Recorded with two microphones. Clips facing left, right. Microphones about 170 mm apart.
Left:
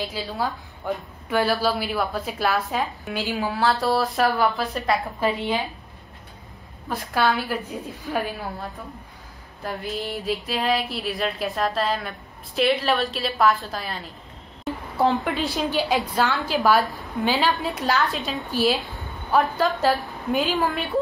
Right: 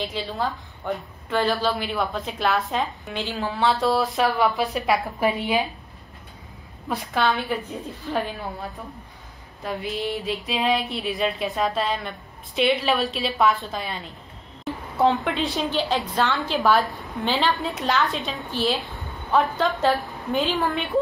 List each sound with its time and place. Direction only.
0.0 s a woman's voice: centre (ahead or behind)
5.2 s a woman's voice: 15° right (ahead or behind)
6.9 s a woman's voice: centre (ahead or behind)